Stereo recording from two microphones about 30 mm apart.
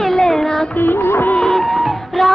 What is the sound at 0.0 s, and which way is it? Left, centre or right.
Music, centre.